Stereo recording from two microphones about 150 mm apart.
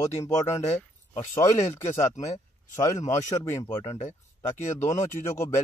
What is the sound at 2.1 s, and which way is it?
Speech, 50° left (ahead or behind).